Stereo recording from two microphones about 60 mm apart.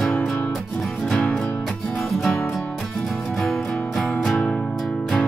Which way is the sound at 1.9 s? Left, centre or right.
Centre.